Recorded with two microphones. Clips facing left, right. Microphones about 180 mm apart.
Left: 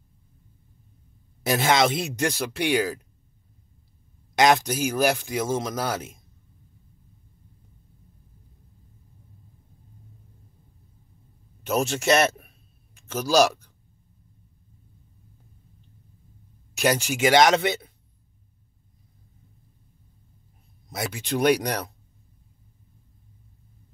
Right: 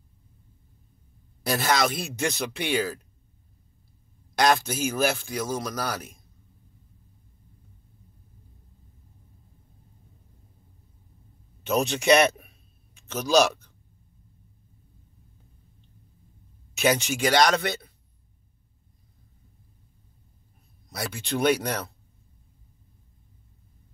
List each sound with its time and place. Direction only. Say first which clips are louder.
1.4 s speech: left 3 dB; 20° left (ahead or behind)
4.4 s a man's voice: left 3 dB; 15° left (ahead or behind)
11.6 s a man's voice: even; 5° left (ahead or behind)
16.8 s speech: even; 10° left (ahead or behind)
17.2 s a man's voice: left 5 dB; 20° left (ahead or behind)
20.9 s speech: left 2 dB; 15° left (ahead or behind)